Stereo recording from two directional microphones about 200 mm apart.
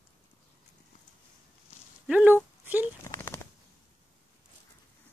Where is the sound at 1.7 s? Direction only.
30° left (ahead or behind).